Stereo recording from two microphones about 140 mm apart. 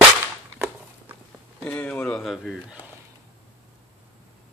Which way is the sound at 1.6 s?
5° left (ahead or behind).